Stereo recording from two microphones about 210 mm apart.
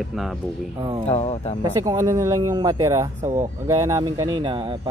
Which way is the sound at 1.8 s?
15° right (ahead or behind).